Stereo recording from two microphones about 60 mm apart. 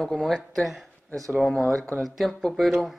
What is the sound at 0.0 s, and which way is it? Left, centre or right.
Speech, centre.